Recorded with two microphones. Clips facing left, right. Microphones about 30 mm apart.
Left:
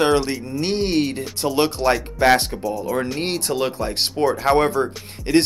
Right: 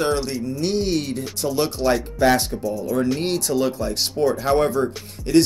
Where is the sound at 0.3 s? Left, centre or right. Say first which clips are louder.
Even; left.